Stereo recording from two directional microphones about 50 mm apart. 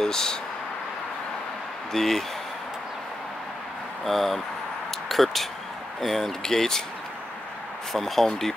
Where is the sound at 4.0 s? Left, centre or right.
Centre.